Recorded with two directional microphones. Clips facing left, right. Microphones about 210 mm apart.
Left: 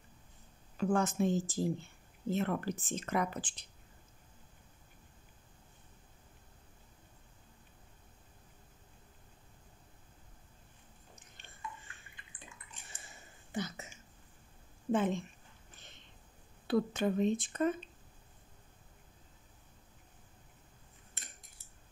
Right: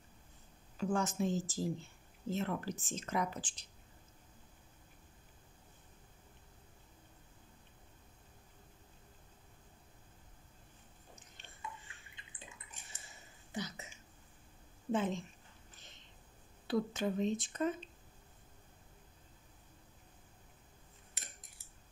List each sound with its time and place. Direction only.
0.7 s speech: 60° left (ahead or behind)
13.5 s a sound: 50° left (ahead or behind)
14.9 s a woman's voice: 55° left (ahead or behind)
16.6 s speech: 55° left (ahead or behind)